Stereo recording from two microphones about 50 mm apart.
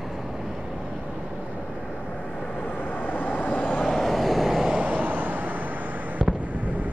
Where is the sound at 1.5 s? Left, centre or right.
Left.